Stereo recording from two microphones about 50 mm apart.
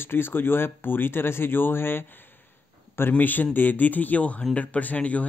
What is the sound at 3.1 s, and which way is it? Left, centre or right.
Speech, left.